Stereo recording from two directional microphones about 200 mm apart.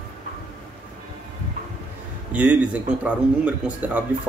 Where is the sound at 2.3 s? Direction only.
5° right (ahead or behind).